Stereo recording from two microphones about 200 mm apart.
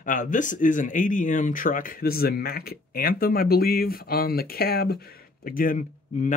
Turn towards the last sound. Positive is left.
turn(degrees=40)  # may be behind; listen again after turning